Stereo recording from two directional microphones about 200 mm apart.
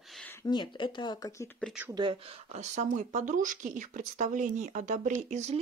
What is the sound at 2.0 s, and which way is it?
Speech, 25° right (ahead or behind).